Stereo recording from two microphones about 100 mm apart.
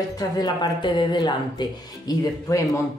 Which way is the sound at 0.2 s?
45° left (ahead or behind).